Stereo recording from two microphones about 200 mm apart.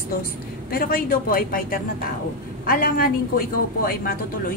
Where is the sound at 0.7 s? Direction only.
45° left (ahead or behind).